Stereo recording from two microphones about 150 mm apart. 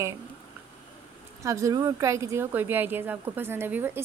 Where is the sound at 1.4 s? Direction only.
20° right (ahead or behind).